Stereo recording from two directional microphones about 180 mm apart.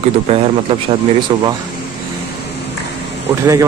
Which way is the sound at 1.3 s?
25° right (ahead or behind).